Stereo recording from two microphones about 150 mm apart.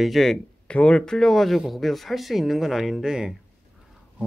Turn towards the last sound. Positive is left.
turn(degrees=-5)  # may be behind; listen again after turning